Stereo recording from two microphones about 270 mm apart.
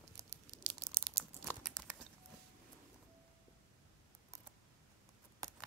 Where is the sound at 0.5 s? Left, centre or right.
Right.